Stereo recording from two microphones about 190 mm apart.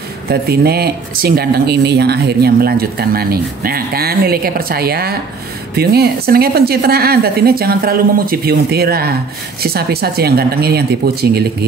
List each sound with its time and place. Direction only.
0.3 s speech: 55° right (ahead or behind)